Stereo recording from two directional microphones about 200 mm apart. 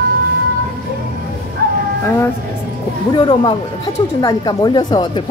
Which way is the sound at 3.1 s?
20° left (ahead or behind).